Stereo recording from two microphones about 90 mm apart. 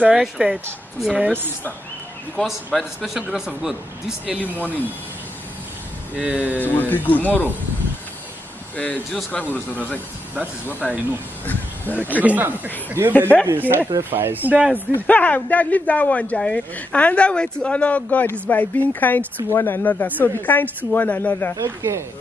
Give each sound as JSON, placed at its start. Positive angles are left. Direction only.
{"t": 0.1, "sound": "speech", "side_deg": -10}
{"t": 2.4, "sound": "a man's voice", "side_deg": 0}
{"t": 4.4, "sound": "speech", "side_deg": 20}
{"t": 6.1, "sound": "speech", "side_deg": -15}
{"t": 6.6, "sound": "speech", "side_deg": 20}
{"t": 8.7, "sound": "speech", "side_deg": 15}
{"t": 10.8, "sound": "speech", "side_deg": -15}
{"t": 11.4, "sound": "speech", "side_deg": 20}
{"t": 12.2, "sound": "speech", "side_deg": -20}
{"t": 15.0, "sound": "speech", "side_deg": 15}
{"t": 21.5, "sound": "speech", "side_deg": -30}